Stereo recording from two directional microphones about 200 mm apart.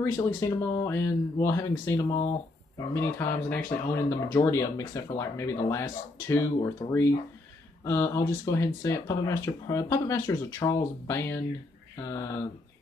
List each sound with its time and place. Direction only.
0.0 s speech: 15° left (ahead or behind)